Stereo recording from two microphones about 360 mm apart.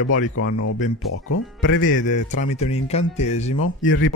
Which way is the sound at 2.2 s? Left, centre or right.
Centre.